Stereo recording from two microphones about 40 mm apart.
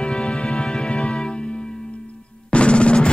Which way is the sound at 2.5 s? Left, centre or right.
Left.